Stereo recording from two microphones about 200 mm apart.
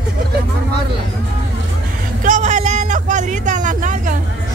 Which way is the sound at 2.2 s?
40° right (ahead or behind).